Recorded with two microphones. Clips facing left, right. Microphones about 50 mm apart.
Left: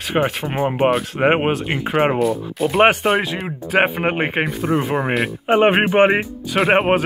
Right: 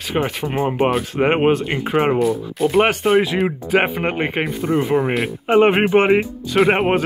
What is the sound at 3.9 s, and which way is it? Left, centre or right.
Speech, centre.